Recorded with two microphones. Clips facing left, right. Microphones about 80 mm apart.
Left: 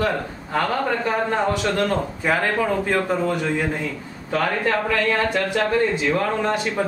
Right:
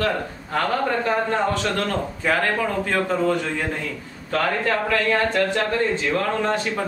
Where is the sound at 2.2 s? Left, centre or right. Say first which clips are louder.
Even; centre.